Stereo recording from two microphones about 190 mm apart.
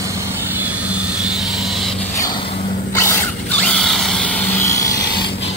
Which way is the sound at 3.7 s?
Centre (ahead or behind).